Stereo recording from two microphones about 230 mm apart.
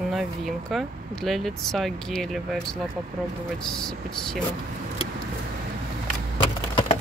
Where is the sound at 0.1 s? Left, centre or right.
Centre.